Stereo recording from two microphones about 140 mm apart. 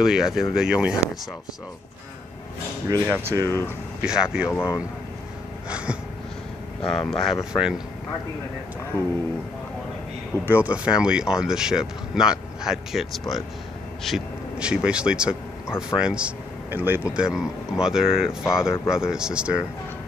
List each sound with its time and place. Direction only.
0.0 s speech: 5° right (ahead or behind)
2.9 s speech: 20° right (ahead or behind)
3.4 s speech: 15° left (ahead or behind)
4.0 s speech: 5° right (ahead or behind)
5.7 s a sound: 5° right (ahead or behind)
6.9 s speech: 5° left (ahead or behind)
10.4 s speech: 10° right (ahead or behind)